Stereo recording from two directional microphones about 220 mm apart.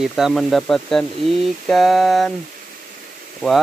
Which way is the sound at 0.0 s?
Centre (ahead or behind).